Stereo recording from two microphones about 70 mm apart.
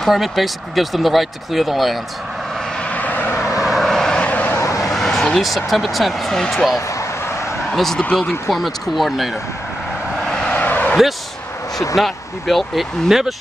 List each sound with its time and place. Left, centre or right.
0.0 s speech: centre
2.8 s vehicle: left
3.4 s vehicle: centre
4.3 s vehicle: left
4.6 s vehicle: left
4.8 s speech: centre
7.0 s vehicle: left
7.7 s speech: centre
10.2 s vehicle: centre
10.5 s vehicle: left
12.0 s speech: centre